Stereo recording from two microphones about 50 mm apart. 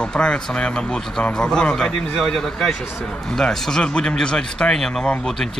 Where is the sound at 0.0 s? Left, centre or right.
Centre.